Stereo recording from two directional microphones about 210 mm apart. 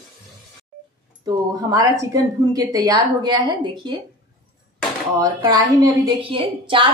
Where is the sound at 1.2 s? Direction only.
15° right (ahead or behind).